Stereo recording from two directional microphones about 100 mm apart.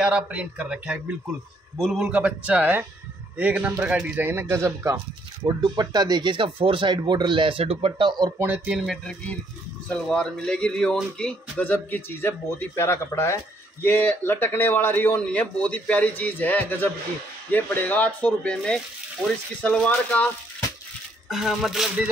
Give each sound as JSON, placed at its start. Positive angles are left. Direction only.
{"t": 0.0, "sound": "speech", "side_deg": -10}
{"t": 4.3, "sound": "speech", "side_deg": -25}
{"t": 5.5, "sound": "speech", "side_deg": -45}
{"t": 8.0, "sound": "speech", "side_deg": -50}
{"t": 8.4, "sound": "speech", "side_deg": -15}
{"t": 8.7, "sound": "music", "side_deg": 0}
{"t": 9.8, "sound": "a man's voice", "side_deg": 5}
{"t": 21.3, "sound": "music", "side_deg": 0}